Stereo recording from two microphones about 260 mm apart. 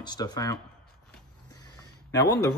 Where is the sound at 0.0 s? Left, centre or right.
Centre.